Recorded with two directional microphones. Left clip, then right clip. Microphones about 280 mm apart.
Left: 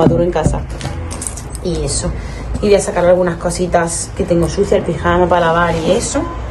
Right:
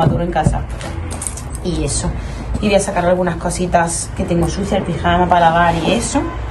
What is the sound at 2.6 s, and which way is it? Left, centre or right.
Speech, centre.